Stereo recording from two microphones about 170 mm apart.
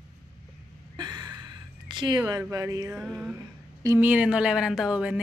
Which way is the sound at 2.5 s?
20° right (ahead or behind).